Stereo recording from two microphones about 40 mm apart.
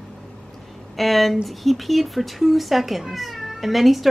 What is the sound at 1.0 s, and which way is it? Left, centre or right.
Speech, centre.